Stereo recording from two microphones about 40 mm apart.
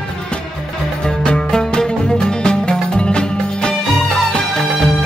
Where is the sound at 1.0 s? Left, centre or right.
Left.